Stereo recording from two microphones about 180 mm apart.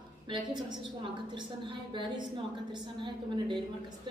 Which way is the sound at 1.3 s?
25° right (ahead or behind).